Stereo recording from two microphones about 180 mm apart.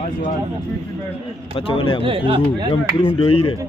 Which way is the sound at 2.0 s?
30° right (ahead or behind).